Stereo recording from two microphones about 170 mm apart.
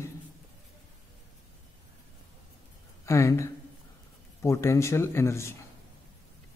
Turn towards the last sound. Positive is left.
turn(degrees=15)  # may be behind; listen again after turning